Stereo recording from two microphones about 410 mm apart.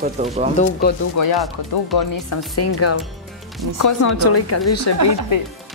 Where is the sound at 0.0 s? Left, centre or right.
Centre.